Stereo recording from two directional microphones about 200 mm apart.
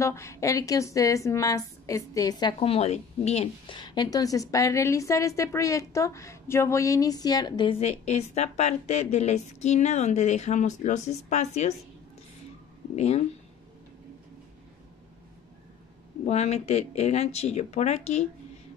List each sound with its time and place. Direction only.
0.0 s a woman's voice: 15° left (ahead or behind)
2.6 s a woman's voice: 30° left (ahead or behind)
12.9 s speech: 30° left (ahead or behind)
16.3 s speech: 35° left (ahead or behind)